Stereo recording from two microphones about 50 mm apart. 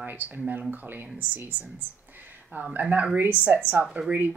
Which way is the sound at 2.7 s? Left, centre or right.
Right.